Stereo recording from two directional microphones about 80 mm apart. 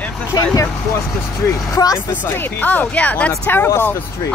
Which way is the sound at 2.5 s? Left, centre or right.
Left.